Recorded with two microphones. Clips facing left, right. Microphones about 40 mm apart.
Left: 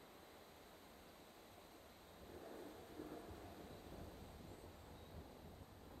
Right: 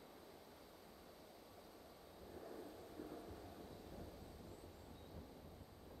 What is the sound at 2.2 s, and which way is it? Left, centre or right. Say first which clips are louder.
Vehicle: right 1 dB; left.